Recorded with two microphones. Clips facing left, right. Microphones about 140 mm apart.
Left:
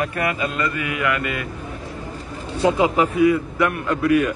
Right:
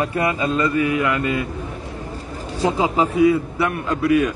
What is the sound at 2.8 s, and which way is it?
A man's voice, 25° right (ahead or behind).